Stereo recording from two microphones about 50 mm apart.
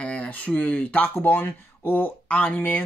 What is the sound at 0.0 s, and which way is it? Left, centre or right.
Speech, left.